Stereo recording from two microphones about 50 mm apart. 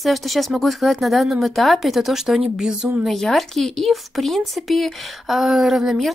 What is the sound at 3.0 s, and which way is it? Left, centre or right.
Speech, centre.